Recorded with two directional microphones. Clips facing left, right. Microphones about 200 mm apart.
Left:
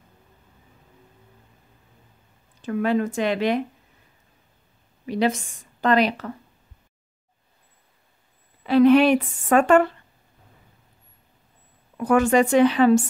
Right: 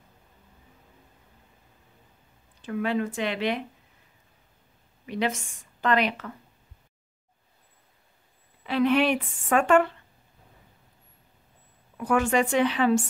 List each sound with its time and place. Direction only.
2.6 s speech: 45° left (ahead or behind)
5.0 s a woman's voice: 35° left (ahead or behind)
8.6 s a woman's voice: 40° left (ahead or behind)
12.0 s a woman's voice: 40° left (ahead or behind)